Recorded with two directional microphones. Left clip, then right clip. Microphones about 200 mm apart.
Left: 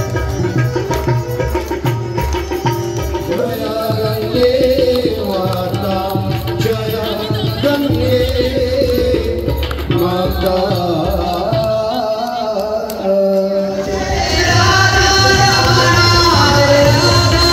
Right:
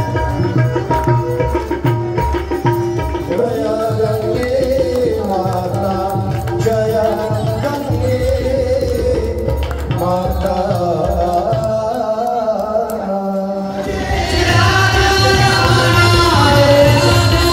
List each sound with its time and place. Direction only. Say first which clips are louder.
14.3 s music: left 1 dB; 30° left (ahead or behind)